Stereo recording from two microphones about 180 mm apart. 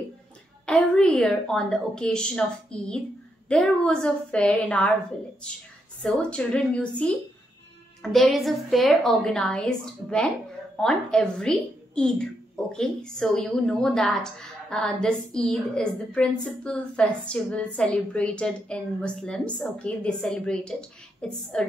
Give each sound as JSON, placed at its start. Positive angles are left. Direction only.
{"t": 0.7, "sound": "a woman's voice", "side_deg": 5}
{"t": 6.0, "sound": "a woman's voice", "side_deg": 5}